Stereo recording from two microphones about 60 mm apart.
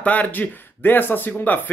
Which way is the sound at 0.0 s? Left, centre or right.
Left.